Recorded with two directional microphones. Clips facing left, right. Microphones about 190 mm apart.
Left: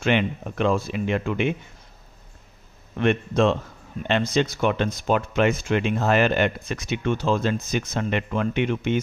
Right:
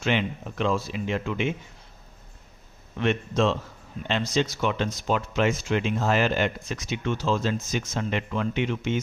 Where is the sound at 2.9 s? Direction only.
55° left (ahead or behind).